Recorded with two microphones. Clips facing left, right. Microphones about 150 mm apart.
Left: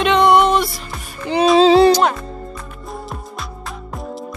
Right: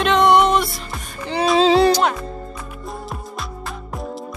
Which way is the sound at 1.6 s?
35° left (ahead or behind).